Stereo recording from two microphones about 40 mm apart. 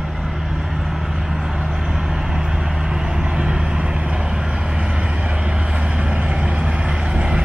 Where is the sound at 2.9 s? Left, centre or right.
Right.